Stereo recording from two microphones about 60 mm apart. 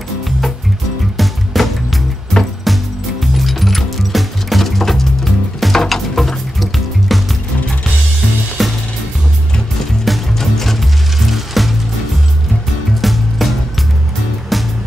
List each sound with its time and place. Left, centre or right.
1.1 s music: centre
8.6 s music: centre
10.0 s music: centre
13.0 s music: centre